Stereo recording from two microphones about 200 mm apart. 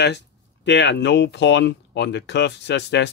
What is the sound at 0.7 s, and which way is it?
Speech, 60° left (ahead or behind).